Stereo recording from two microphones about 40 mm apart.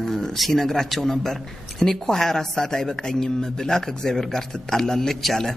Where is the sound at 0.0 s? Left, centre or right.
Centre.